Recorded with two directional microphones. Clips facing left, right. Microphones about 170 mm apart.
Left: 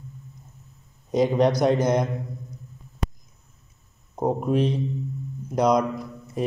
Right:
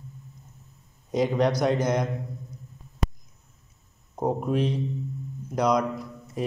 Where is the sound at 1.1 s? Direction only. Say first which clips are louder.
Left 3 dB; 25° left (ahead or behind).